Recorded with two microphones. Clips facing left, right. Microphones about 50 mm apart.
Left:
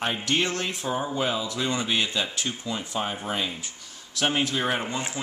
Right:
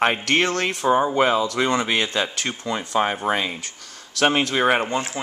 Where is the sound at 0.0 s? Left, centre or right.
Right.